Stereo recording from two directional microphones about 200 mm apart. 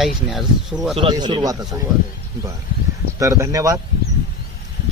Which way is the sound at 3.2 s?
15° right (ahead or behind).